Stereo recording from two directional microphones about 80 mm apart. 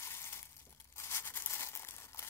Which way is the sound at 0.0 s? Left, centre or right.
Left.